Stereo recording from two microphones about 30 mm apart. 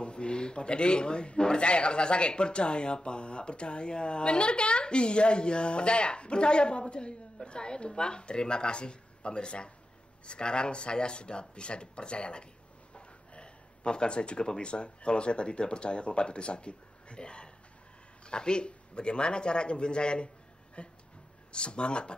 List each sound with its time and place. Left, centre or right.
0.0 s a man's voice: left
12.9 s a sound: left
14.6 s a man's voice: left